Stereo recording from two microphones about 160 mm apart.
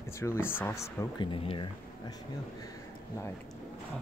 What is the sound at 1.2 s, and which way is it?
Speech, 35° left (ahead or behind).